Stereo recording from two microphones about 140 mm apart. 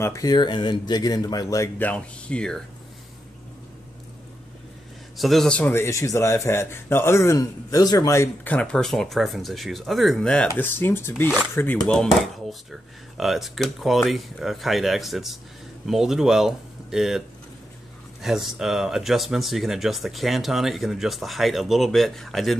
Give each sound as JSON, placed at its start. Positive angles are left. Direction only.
{"t": 0.0, "sound": "a man's voice", "side_deg": 25}
{"t": 1.8, "sound": "speech", "side_deg": 10}
{"t": 5.1, "sound": "a man's voice", "side_deg": 0}
{"t": 8.5, "sound": "speech", "side_deg": 5}
{"t": 18.2, "sound": "speech", "side_deg": -5}